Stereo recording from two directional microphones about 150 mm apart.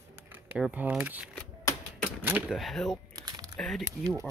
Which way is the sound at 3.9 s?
20° right (ahead or behind).